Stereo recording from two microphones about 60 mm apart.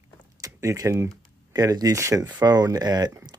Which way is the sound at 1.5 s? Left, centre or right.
Right.